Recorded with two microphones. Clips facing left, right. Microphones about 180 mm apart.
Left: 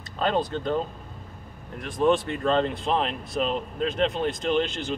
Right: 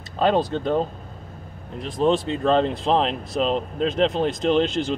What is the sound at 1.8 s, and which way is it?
Speech, 20° right (ahead or behind).